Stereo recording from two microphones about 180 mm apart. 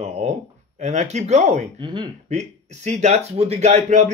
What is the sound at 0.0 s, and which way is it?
Speech, 40° right (ahead or behind).